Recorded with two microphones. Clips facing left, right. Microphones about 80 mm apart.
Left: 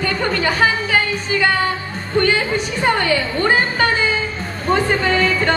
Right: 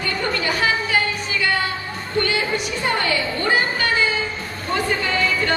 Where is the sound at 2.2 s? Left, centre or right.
Left.